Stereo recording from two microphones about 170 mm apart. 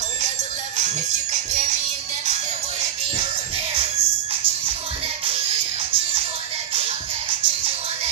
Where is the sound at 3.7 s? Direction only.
35° right (ahead or behind).